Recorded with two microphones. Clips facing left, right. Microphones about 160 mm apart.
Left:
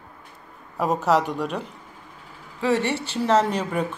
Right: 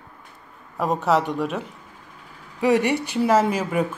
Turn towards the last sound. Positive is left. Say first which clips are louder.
# right 1 dB
turn(degrees=-5)  # may be behind; listen again after turning